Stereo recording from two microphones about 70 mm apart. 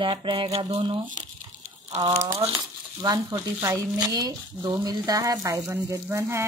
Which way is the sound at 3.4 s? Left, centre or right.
Right.